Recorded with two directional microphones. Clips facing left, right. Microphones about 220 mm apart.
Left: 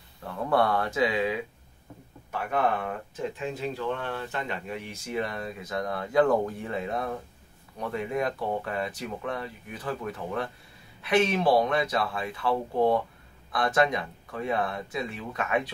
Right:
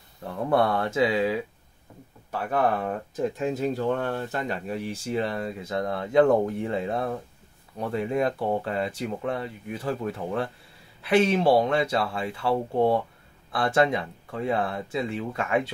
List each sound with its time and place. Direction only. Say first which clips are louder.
0.2 s speech: right 2 dB; 25° right (ahead or behind)